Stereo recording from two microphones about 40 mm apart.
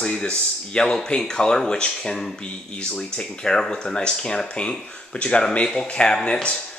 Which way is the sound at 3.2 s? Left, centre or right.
Centre.